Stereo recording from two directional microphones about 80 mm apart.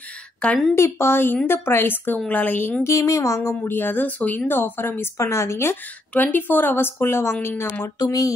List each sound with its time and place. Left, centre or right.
0.4 s a woman's voice: centre
0.7 s a woman's voice: left
2.9 s a woman's voice: left
6.1 s a woman's voice: left
8.0 s speech: left